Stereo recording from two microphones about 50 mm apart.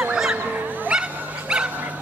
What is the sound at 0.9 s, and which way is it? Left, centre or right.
Dog, centre.